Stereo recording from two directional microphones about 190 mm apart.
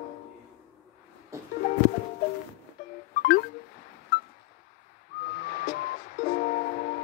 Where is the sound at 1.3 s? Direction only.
15° right (ahead or behind).